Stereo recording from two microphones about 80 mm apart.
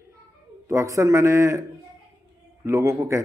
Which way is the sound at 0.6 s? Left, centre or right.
Right.